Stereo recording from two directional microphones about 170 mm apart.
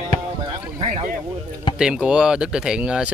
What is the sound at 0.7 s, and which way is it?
Speech, 45° right (ahead or behind).